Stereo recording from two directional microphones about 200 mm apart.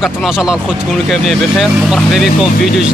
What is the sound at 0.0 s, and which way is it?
Speech, centre (ahead or behind).